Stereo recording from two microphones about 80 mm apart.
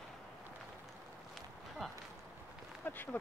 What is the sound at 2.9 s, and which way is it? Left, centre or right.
Speech, left.